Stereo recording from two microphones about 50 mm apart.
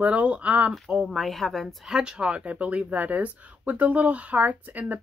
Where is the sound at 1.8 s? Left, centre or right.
Centre; by 4.9 s right.